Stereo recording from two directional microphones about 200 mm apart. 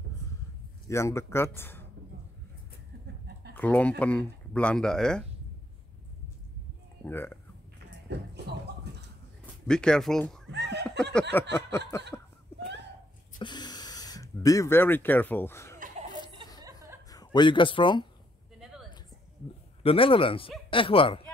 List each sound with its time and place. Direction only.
0.8 s speech: 15° left (ahead or behind)
3.5 s speech: 5° left (ahead or behind)
7.1 s speech: 10° left (ahead or behind)
8.1 s speech: 55° right (ahead or behind)
9.7 s speech: 5° left (ahead or behind)
10.4 s snicker: 60° right (ahead or behind)
11.3 s speech: 10° left (ahead or behind)
13.4 s speech: 20° left (ahead or behind)
16.6 s music: 15° right (ahead or behind)
17.1 s speech: 20° left (ahead or behind)
18.6 s a sound: centre (ahead or behind)
19.8 s speech: 30° left (ahead or behind)